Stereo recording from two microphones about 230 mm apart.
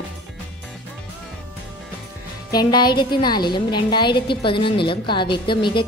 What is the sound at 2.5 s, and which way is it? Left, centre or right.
A woman's voice, centre.